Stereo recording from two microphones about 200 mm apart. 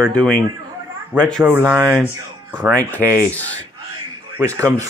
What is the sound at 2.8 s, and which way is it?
Speech, 10° left (ahead or behind).